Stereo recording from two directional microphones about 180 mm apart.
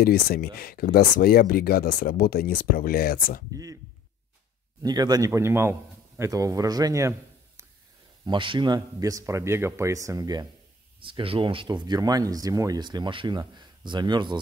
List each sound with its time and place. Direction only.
0.0 s speech: 60° left (ahead or behind)
3.5 s speech: 20° right (ahead or behind)
4.8 s a man's voice: 20° right (ahead or behind)
8.3 s speech: 25° right (ahead or behind)